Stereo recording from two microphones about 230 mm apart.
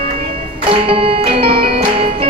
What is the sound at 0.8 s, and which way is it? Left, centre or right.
Music, right.